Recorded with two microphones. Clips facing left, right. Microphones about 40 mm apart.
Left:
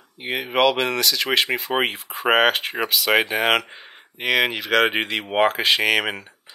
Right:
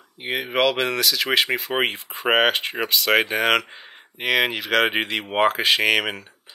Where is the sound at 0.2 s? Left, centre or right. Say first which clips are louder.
Left 2 dB; centre.